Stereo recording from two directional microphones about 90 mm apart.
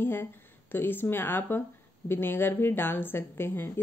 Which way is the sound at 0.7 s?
25° left (ahead or behind).